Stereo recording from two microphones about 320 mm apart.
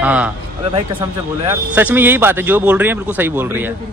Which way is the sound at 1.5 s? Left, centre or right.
Centre.